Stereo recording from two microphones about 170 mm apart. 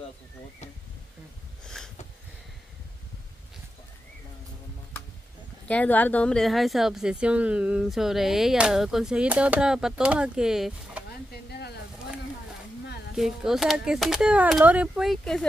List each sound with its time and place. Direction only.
5.7 s a woman's voice: 10° left (ahead or behind)
11.1 s a sound: 70° left (ahead or behind)
13.1 s a woman's voice: centre (ahead or behind)